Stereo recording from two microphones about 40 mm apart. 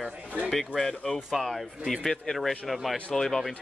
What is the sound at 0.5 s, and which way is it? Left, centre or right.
A man's voice, centre.